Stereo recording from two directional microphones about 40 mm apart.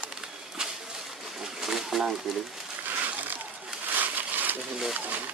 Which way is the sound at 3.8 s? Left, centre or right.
Right.